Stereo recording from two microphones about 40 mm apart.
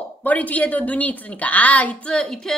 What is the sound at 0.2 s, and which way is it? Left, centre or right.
A woman's voice, left.